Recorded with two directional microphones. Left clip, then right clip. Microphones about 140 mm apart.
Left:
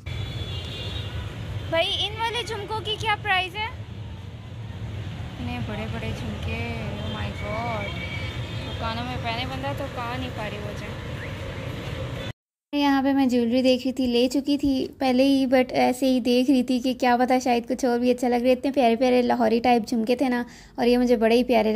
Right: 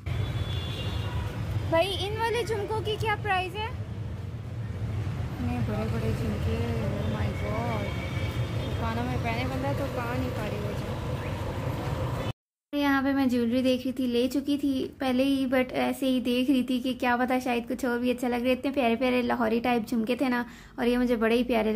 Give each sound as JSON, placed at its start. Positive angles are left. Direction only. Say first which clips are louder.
{"t": 1.7, "sound": "a woman's voice", "louder": "left 2 dB", "side_deg": -35}
{"t": 2.8, "sound": "speech", "louder": "left 3 dB", "side_deg": -20}
{"t": 8.8, "sound": "speech", "louder": "left 3 dB", "side_deg": -20}
{"t": 12.7, "sound": "a woman's voice", "louder": "left 4 dB", "side_deg": 35}